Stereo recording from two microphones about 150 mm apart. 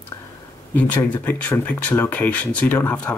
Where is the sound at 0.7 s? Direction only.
10° left (ahead or behind).